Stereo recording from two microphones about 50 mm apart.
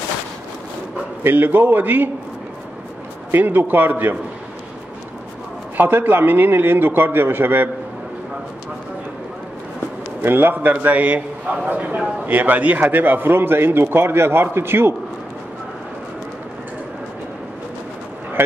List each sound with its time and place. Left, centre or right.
1.2 s a man's voice: right
3.3 s a man's voice: right
5.8 s a man's voice: right
10.2 s a man's voice: right